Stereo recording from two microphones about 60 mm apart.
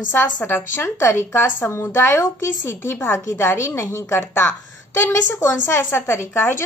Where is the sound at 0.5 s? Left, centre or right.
Left.